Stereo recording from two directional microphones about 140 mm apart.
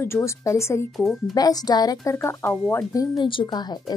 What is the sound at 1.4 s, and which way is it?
Speech, 25° left (ahead or behind).